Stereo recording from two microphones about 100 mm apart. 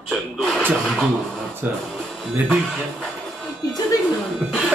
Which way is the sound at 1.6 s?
20° right (ahead or behind).